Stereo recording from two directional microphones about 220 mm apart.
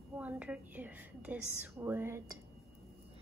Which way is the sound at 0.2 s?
5° right (ahead or behind).